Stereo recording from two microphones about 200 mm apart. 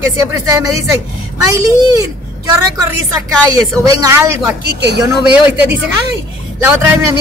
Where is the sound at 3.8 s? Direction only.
15° right (ahead or behind).